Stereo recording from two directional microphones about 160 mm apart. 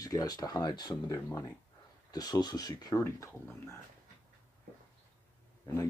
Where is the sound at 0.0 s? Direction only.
25° left (ahead or behind).